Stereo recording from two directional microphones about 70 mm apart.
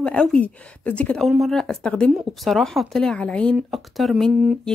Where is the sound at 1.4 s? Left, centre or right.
Centre.